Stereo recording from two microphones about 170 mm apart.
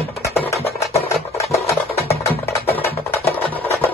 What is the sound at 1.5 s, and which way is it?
Music, 15° left (ahead or behind).